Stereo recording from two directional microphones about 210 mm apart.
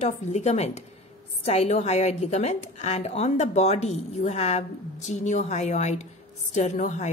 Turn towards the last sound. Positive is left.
turn(degrees=35)  # may be behind; listen again after turning